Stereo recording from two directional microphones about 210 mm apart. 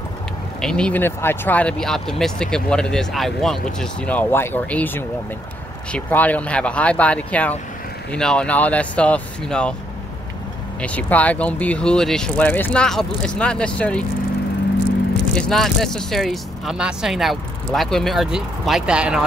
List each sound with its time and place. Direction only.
0.6 s speech: 5° left (ahead or behind)
10.8 s speech: 5° left (ahead or behind)
15.3 s speech: 5° left (ahead or behind)